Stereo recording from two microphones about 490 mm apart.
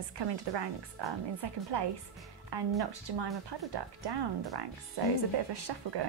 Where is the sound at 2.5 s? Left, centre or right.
Right.